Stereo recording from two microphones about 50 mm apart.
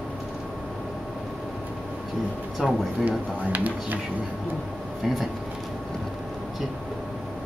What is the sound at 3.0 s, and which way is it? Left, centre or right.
Speech, right.